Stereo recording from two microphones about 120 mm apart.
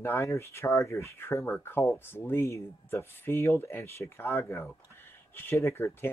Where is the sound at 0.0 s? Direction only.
25° left (ahead or behind).